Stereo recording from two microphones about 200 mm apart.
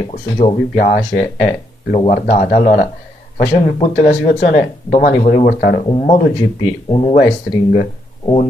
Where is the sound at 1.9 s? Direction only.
40° left (ahead or behind).